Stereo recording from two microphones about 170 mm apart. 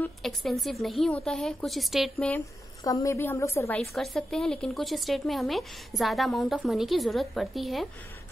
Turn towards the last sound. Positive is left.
turn(degrees=0)  # may be behind; listen again after turning